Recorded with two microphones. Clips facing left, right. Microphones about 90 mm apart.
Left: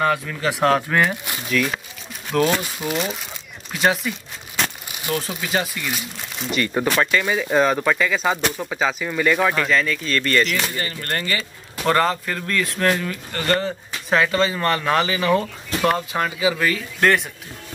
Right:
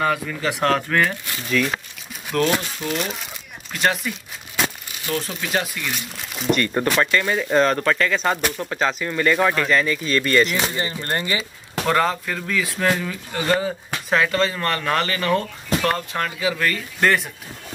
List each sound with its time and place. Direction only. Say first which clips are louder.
0.0 s speech: left 1 dB; centre (ahead or behind)
2.6 s speech: left 1 dB; 5° left (ahead or behind)
4.6 s a sound: right 1 dB; 10° right (ahead or behind)
5.0 s speech: left 1 dB; 5° left (ahead or behind)
10.5 s speech: right 1 dB; 20° right (ahead or behind)
11.8 s speech: left 1 dB; centre (ahead or behind)